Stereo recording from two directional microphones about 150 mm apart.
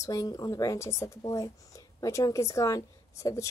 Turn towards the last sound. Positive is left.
turn(degrees=20)  # may be behind; listen again after turning